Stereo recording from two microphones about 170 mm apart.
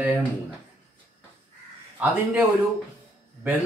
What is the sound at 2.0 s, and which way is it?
Speech, 10° right (ahead or behind).